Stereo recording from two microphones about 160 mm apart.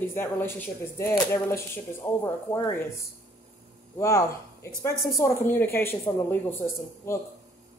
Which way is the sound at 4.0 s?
20° left (ahead or behind).